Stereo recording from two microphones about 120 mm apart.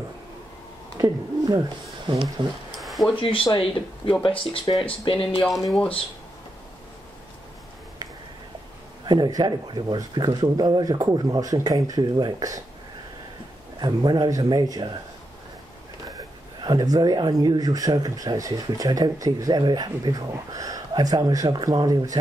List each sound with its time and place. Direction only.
0.9 s speech: 35° right (ahead or behind)
2.8 s a sound: centre (ahead or behind)
3.1 s speech: 45° left (ahead or behind)
5.7 s speech: 5° left (ahead or behind)
9.0 s speech: 35° right (ahead or behind)
13.7 s speech: 35° right (ahead or behind)
16.6 s speech: 35° right (ahead or behind)